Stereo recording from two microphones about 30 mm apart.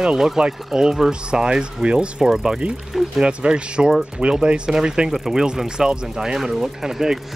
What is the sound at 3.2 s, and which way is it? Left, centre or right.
Speech, right.